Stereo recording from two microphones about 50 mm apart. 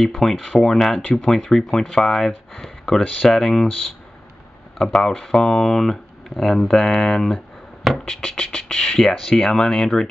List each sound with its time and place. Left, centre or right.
0.0 s speech: centre
4.7 s speech: centre
6.8 s speech: centre
8.0 s music: centre
8.5 s speech: centre